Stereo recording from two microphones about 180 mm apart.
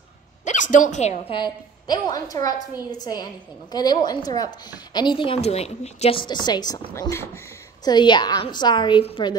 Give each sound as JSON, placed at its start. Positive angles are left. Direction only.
{"t": 0.5, "sound": "a woman's voice", "side_deg": 45}
{"t": 1.3, "sound": "a woman's voice", "side_deg": 25}